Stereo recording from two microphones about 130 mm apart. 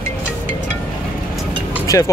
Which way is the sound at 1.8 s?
25° left (ahead or behind).